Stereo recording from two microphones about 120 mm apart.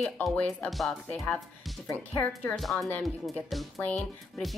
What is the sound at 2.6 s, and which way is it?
Speech, centre (ahead or behind).